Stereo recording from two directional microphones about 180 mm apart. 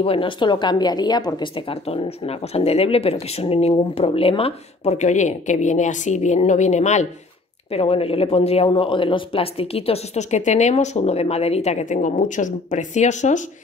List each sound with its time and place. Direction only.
0.0 s speech: 30° left (ahead or behind)